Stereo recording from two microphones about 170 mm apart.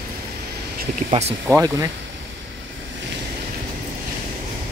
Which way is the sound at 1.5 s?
20° right (ahead or behind).